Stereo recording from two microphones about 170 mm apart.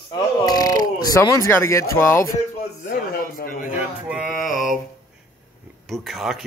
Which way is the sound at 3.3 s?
55° left (ahead or behind).